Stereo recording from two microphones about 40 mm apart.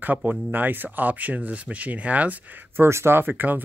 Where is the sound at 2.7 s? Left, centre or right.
Right.